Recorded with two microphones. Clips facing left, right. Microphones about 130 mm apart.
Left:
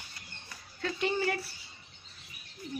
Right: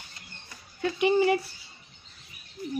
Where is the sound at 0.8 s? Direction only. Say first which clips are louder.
Right 8 dB; 15° right (ahead or behind).